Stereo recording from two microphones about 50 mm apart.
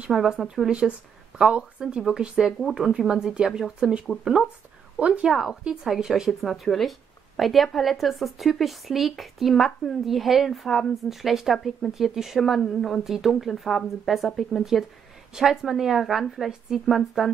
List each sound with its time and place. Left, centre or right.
0.1 s a woman's voice: centre
0.7 s a woman's voice: centre
4.9 s speech: right
5.3 s a woman's voice: centre